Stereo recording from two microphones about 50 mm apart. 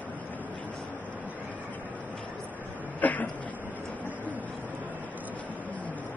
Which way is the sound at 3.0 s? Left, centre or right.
Left.